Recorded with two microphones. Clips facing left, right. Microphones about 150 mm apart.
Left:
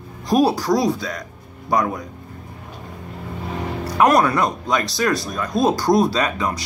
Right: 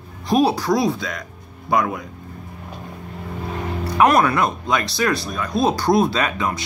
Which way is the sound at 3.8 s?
40° left (ahead or behind).